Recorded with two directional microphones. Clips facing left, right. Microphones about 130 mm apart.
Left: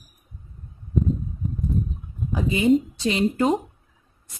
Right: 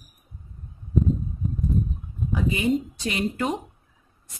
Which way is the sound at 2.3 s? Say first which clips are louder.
Left 4 dB; 25° left (ahead or behind).